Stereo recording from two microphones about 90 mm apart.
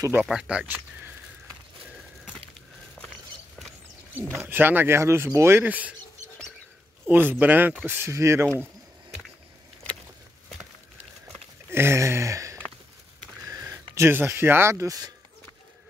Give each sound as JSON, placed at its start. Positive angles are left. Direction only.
{"t": 0.2, "sound": "speech", "side_deg": -10}
{"t": 4.4, "sound": "speech", "side_deg": -25}
{"t": 5.7, "sound": "speech", "side_deg": -15}
{"t": 7.1, "sound": "speech", "side_deg": -20}
{"t": 11.7, "sound": "a sound", "side_deg": -30}
{"t": 13.5, "sound": "speech", "side_deg": -35}